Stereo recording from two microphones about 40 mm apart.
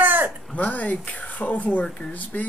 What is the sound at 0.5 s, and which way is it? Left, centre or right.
Speech, left.